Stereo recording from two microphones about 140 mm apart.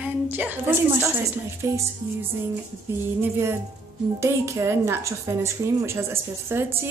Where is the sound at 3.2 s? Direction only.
20° right (ahead or behind).